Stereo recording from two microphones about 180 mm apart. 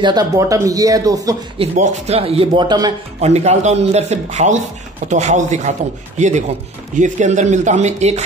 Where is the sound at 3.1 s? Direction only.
40° right (ahead or behind).